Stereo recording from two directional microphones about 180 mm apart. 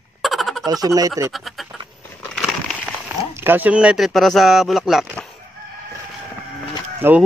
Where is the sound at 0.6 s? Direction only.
20° right (ahead or behind).